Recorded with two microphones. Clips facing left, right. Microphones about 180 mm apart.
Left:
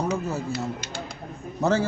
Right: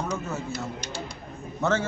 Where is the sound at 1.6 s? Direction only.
35° left (ahead or behind).